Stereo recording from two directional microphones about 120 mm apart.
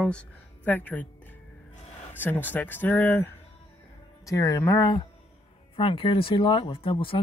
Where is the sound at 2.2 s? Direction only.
15° left (ahead or behind).